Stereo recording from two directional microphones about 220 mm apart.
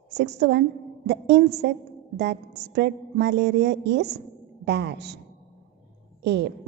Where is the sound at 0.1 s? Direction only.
50° right (ahead or behind).